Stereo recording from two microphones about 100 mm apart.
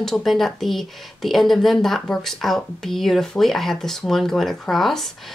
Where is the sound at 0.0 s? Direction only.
Centre (ahead or behind).